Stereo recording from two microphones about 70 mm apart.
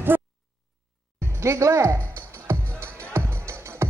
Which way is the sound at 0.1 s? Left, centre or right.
Right.